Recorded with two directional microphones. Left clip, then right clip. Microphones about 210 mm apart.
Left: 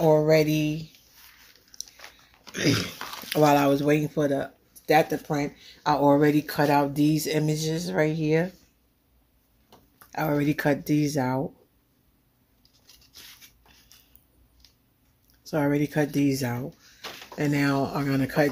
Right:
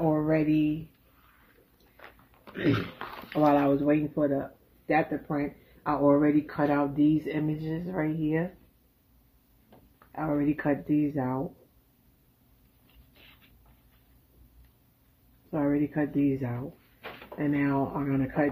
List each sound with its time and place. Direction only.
0.0 s speech: 55° left (ahead or behind)
2.0 s biting: centre (ahead or behind)
3.3 s speech: 65° left (ahead or behind)
10.1 s speech: 65° left (ahead or behind)
15.5 s speech: 60° left (ahead or behind)